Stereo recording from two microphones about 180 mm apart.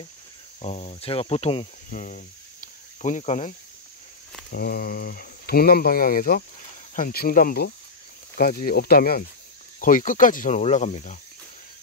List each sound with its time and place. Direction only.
0.6 s cricket: 35° left (ahead or behind)
1.9 s speech: 45° left (ahead or behind)
4.5 s speech: 55° left (ahead or behind); by 11.1 s 40° left (ahead or behind)